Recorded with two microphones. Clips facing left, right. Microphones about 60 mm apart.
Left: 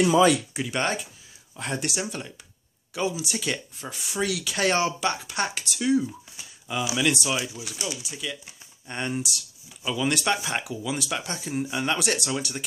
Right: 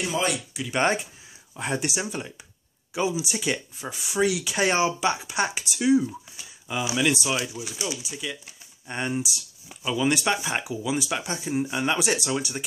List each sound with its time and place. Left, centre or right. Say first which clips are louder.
0.7 s speech: right 4 dB; right
1.6 s speech: right 2 dB; centre